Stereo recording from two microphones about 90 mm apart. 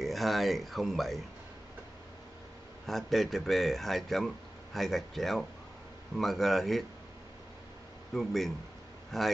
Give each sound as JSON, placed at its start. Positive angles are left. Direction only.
{"t": 0.0, "sound": "a man's voice", "side_deg": 0}
{"t": 2.9, "sound": "a man's voice", "side_deg": 0}
{"t": 8.1, "sound": "a man's voice", "side_deg": 0}